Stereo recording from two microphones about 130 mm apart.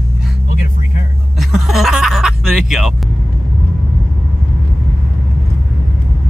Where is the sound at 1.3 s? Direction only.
Centre (ahead or behind).